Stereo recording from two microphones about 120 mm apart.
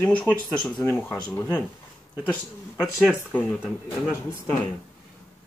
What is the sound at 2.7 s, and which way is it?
Speech, 10° right (ahead or behind).